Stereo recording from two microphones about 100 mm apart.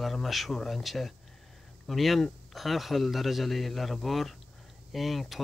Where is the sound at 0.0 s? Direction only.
Centre (ahead or behind).